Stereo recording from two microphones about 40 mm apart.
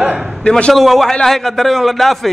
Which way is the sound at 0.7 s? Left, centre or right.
Centre.